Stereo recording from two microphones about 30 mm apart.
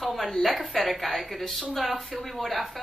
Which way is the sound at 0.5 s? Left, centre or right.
Centre.